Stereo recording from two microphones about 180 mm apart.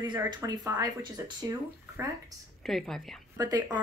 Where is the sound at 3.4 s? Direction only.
20° right (ahead or behind).